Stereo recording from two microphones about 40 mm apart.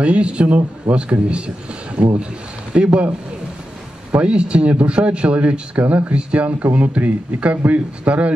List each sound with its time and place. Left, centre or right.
0.0 s a man's voice: right